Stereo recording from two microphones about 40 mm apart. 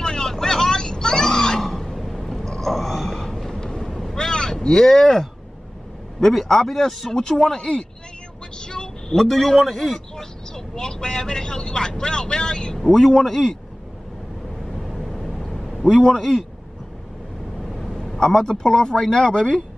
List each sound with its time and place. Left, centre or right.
0.0 s a sound: centre
4.6 s speech: centre
8.5 s vehicle: centre
9.1 s a man's voice: centre
9.9 s speech: centre
14.8 s vehicle: centre
15.4 s a sound: centre
15.8 s a man's voice: centre
17.6 s vehicle: centre
18.0 s speech: centre